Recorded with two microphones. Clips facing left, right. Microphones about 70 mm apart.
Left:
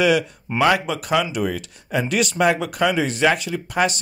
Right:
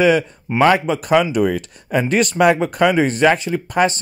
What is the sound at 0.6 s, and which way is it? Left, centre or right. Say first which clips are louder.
Speech: right 4 dB; right.